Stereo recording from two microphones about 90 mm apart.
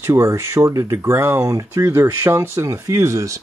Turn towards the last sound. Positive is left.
turn(degrees=-35)  # may be behind; listen again after turning